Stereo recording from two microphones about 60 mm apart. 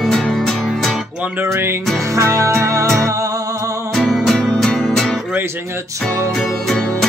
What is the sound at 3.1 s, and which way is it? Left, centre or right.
Music, right.